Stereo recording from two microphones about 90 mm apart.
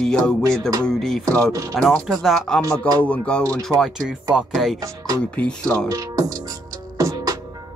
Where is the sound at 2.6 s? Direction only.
40° right (ahead or behind).